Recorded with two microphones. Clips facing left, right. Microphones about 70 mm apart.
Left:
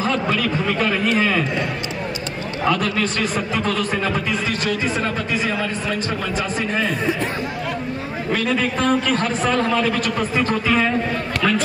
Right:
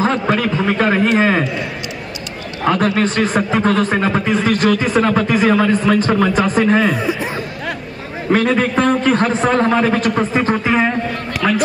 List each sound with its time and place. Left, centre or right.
0.0 s a man's voice: right
2.6 s a man's voice: right
7.0 s speech: centre
8.3 s a man's voice: right
11.4 s speech: centre